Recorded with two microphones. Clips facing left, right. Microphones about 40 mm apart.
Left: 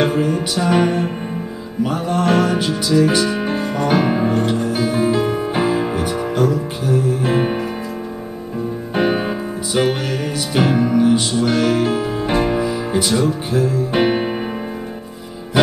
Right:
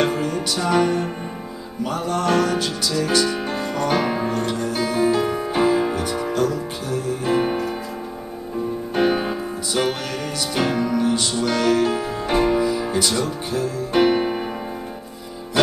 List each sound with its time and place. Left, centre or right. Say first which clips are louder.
0.0 s music: left 4 dB; centre
8.9 s music: left 2 dB; centre
15.6 s music: left 3 dB; centre